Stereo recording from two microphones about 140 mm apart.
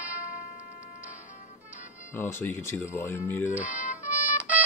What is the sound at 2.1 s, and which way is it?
Speech, 15° left (ahead or behind).